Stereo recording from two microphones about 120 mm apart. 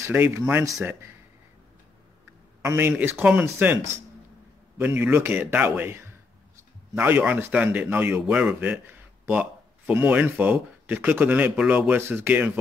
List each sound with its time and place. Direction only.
0.0 s speech: 20° right (ahead or behind)
2.6 s speech: 20° right (ahead or behind)